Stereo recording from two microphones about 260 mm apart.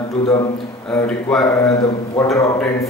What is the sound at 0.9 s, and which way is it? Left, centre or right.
A man's voice, centre.